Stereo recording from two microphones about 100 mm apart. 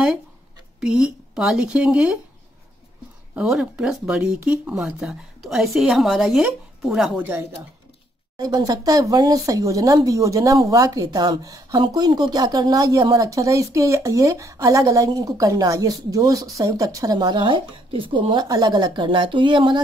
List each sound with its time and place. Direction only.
0.7 s speech: 5° right (ahead or behind)
3.3 s speech: 10° right (ahead or behind)
7.2 s speech: 20° right (ahead or behind)
8.4 s speech: 40° right (ahead or behind)